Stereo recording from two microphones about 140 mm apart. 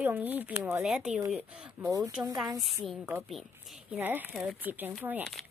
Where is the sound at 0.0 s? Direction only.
15° right (ahead or behind).